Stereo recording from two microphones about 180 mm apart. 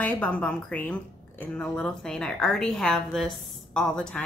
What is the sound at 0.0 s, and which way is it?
A woman's voice, 5° left (ahead or behind).